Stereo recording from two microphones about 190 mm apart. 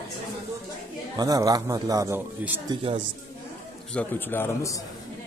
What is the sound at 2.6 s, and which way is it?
Speech, 25° right (ahead or behind).